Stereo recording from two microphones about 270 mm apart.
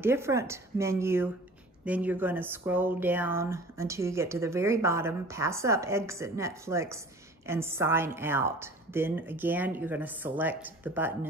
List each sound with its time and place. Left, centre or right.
0.0 s speech: centre